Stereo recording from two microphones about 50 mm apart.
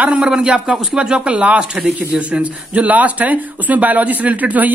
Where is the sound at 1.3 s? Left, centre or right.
Right.